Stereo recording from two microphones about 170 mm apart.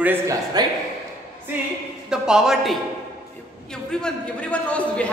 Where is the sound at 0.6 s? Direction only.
25° right (ahead or behind).